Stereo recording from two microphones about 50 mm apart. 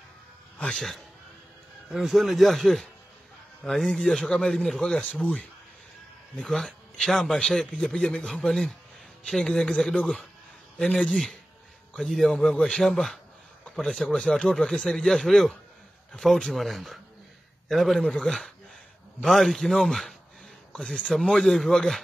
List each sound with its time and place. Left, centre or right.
0.7 s speech: centre
5.2 s speech: left
6.4 s a man's voice: centre
12.1 s speech: centre
12.8 s speech: centre
20.7 s a man's voice: centre
21.1 s speech: centre